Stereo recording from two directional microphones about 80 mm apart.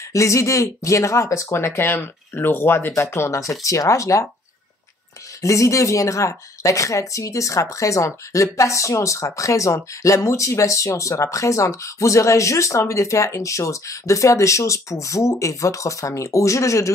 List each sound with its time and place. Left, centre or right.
0.1 s speech: left
5.4 s speech: left